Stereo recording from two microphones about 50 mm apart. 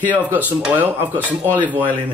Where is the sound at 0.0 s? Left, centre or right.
Right.